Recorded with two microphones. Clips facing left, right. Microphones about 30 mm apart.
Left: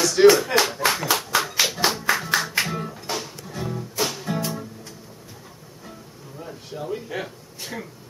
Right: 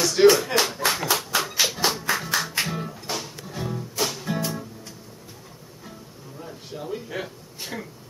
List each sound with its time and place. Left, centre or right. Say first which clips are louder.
0.0 s speech: left 2 dB; centre
1.1 s music: left 2 dB; centre
6.4 s a sound: left 2 dB; centre